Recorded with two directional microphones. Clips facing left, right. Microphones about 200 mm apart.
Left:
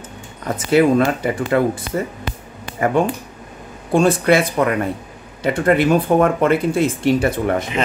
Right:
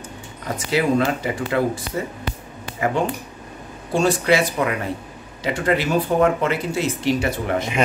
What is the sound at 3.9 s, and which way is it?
Speech, 55° left (ahead or behind).